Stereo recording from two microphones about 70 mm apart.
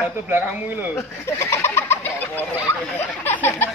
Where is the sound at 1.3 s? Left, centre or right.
Left.